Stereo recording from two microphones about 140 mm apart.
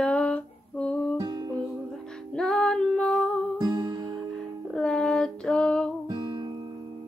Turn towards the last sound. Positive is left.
turn(degrees=-30)  # may be behind; listen again after turning